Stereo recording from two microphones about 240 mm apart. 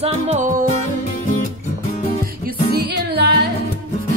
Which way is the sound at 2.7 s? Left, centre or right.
Right.